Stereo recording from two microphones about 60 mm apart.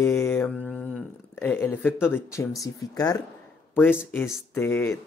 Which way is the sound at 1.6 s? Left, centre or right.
Left.